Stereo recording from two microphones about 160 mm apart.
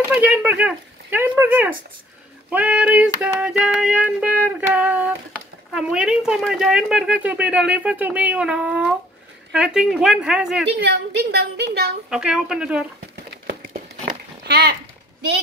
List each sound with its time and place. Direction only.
0.1 s child singing: 10° right (ahead or behind)
5.7 s speech: 5° right (ahead or behind)
10.8 s a woman's voice: 90° right
12.1 s speech: 5° right (ahead or behind)
14.4 s a sound: 85° right